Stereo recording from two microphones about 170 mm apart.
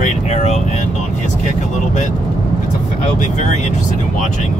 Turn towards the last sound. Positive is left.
turn(degrees=45)  # may be behind; listen again after turning